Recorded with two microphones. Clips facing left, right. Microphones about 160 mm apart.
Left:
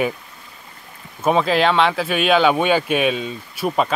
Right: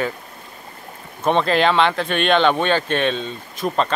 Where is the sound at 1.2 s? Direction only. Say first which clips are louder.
Even; 5° left (ahead or behind).